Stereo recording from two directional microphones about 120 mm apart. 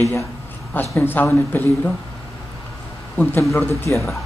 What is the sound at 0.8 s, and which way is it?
A woman's voice, 20° left (ahead or behind).